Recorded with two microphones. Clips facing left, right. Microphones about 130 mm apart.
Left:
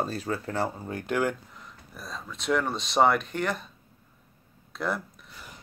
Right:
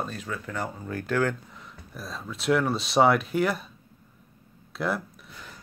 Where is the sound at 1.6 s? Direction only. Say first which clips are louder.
Right 5 dB; centre (ahead or behind).